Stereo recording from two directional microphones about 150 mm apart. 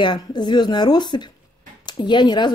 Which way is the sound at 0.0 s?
30° left (ahead or behind).